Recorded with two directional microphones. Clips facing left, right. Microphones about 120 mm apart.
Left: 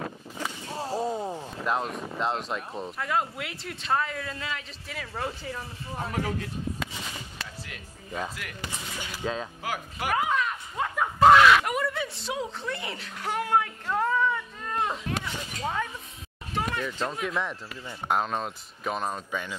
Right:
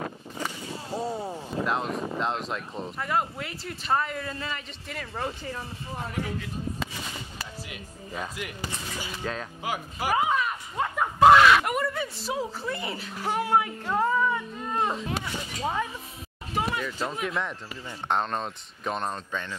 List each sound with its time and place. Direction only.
1.7 s speech: centre (ahead or behind)
6.8 s music: centre (ahead or behind)
8.8 s speech: 5° right (ahead or behind)
9.1 s speech: 10° left (ahead or behind)
9.6 s a sound: 5° right (ahead or behind)
11.1 s speech: 5° right (ahead or behind)
16.5 s a sound: 5° right (ahead or behind)
17.0 s speech: centre (ahead or behind)